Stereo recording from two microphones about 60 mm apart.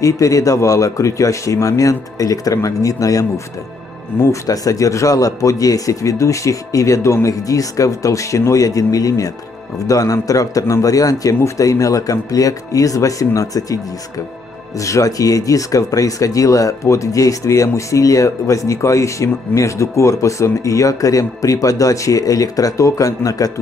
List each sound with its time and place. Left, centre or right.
0.0 s speech: left
4.1 s speech: left
4.5 s speech: left
11.4 s speech: left
14.8 s speech: left